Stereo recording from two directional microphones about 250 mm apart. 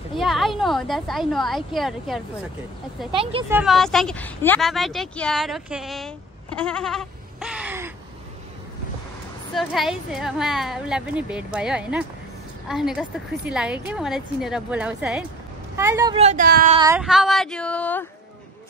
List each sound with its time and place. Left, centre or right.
0.1 s speech: centre
3.1 s speech: right
3.4 s speech: centre
9.6 s a woman's voice: centre; by 16.7 s right
16.7 s a sound: centre
17.0 s a woman's voice: centre